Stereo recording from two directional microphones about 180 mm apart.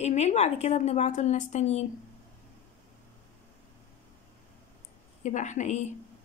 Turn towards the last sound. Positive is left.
turn(degrees=40)  # may be behind; listen again after turning